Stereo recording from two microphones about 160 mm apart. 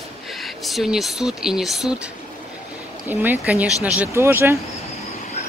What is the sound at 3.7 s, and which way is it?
Speech, 20° left (ahead or behind).